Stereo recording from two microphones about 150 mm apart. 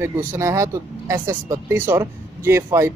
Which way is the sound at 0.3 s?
20° right (ahead or behind).